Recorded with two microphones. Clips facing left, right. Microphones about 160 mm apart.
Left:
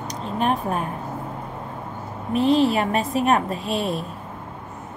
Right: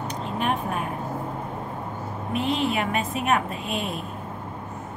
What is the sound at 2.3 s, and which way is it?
A woman's voice, 35° left (ahead or behind).